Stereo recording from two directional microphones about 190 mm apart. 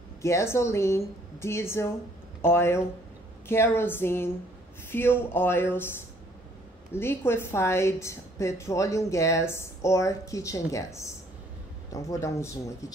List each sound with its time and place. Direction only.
0.2 s a woman's voice: 15° left (ahead or behind)